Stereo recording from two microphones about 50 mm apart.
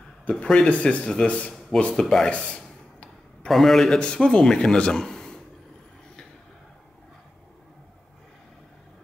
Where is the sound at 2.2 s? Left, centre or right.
Left.